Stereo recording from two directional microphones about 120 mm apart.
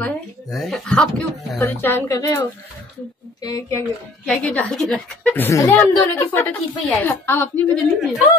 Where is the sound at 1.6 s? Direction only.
20° left (ahead or behind).